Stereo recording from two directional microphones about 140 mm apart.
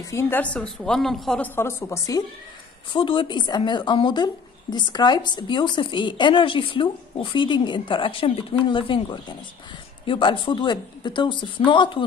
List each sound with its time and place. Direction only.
0.1 s a woman's voice: 15° left (ahead or behind)
1.5 s a woman's voice: 20° left (ahead or behind)
2.9 s speech: 35° left (ahead or behind)